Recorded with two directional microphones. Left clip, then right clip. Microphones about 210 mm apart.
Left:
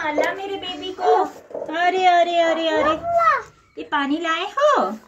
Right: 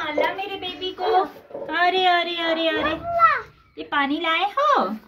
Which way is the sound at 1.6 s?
45° right (ahead or behind).